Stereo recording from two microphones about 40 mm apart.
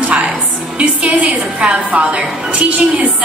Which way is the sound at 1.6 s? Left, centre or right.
Right.